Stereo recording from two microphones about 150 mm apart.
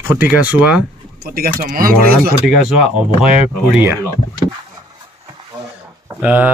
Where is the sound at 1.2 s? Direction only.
85° right.